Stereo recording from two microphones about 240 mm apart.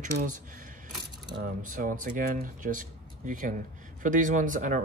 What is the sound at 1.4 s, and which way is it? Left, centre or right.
Speech, right.